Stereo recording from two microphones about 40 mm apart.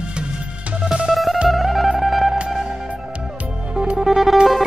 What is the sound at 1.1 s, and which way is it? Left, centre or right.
Music, centre.